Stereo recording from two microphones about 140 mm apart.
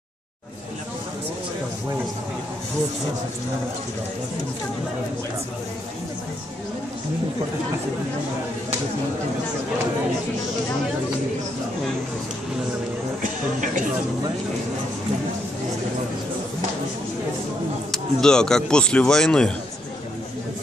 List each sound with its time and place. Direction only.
13.2 s speech: 70° right (ahead or behind)
17.9 s speech: 5° left (ahead or behind)